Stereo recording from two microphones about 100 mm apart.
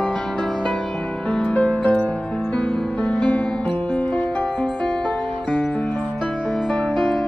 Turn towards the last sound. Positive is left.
turn(degrees=5)  # may be behind; listen again after turning